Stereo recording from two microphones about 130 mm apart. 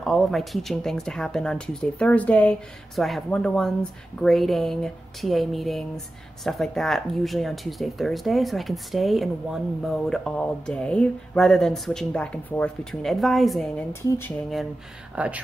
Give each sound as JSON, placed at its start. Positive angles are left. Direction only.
{"t": 0.0, "sound": "speech", "side_deg": 0}
{"t": 14.0, "sound": "speech", "side_deg": 20}
{"t": 15.1, "sound": "speech", "side_deg": -10}